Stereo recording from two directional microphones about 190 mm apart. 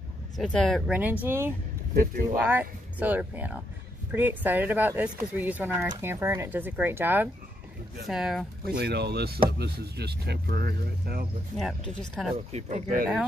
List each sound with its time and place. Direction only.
0.4 s speech: centre (ahead or behind)
8.7 s speech: 60° right (ahead or behind)
11.5 s speech: centre (ahead or behind)
12.5 s speech: 35° right (ahead or behind)